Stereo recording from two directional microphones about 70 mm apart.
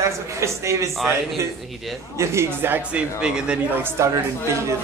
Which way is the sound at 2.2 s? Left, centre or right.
Right.